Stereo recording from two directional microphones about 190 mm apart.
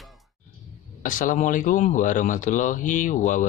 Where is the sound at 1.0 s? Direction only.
45° left (ahead or behind).